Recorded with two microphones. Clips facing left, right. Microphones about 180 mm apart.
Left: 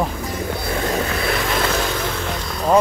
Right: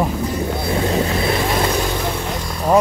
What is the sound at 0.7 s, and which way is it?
Vehicle, 25° right (ahead or behind).